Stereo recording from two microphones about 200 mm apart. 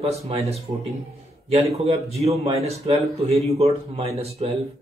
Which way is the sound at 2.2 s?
30° right (ahead or behind).